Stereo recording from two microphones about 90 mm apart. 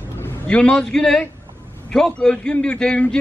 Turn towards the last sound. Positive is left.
turn(degrees=10)  # may be behind; listen again after turning